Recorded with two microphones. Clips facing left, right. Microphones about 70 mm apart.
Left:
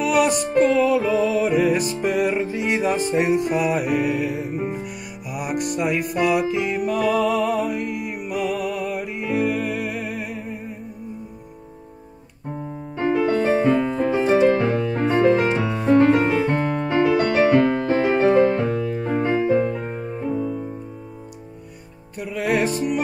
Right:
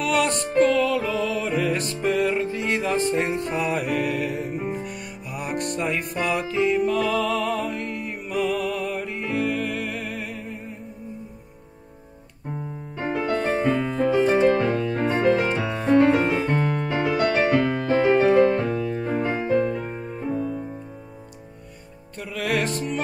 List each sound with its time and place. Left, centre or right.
0.0 s music: centre
13.0 s music: centre
13.3 s music: centre
13.7 s keyboard: centre
14.5 s piano: left
15.1 s music: left
16.5 s piano: left
17.0 s music: centre
22.2 s music: centre